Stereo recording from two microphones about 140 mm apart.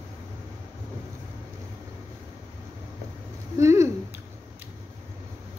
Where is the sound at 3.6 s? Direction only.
20° right (ahead or behind).